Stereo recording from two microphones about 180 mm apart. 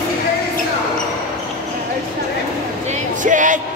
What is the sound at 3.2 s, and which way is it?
Music, 45° right (ahead or behind).